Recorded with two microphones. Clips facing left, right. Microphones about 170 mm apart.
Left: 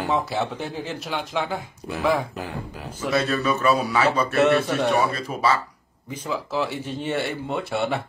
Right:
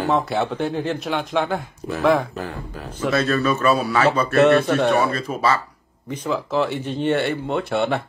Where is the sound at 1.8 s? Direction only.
10° left (ahead or behind).